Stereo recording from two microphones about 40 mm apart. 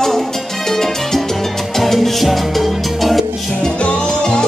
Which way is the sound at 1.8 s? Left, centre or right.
Centre.